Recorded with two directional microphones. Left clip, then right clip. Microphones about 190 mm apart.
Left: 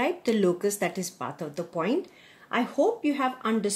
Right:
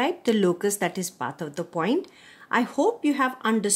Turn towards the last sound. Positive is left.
turn(degrees=-40)  # may be behind; listen again after turning